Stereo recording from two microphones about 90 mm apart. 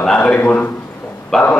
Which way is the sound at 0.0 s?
10° left (ahead or behind).